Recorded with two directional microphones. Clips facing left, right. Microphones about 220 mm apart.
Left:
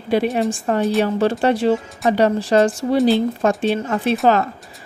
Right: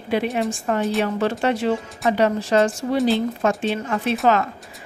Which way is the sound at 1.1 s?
35° left (ahead or behind).